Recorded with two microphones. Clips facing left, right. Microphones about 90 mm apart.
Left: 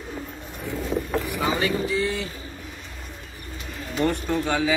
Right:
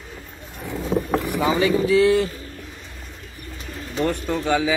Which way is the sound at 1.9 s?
65° right (ahead or behind).